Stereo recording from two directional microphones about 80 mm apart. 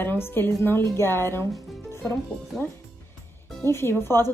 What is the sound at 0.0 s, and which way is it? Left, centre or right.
A woman's voice, left.